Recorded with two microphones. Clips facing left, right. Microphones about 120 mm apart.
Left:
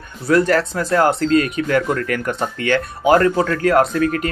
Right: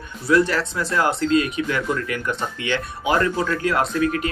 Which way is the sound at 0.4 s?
55° left (ahead or behind).